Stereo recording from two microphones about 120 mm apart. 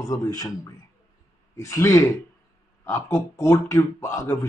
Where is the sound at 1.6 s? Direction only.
25° left (ahead or behind).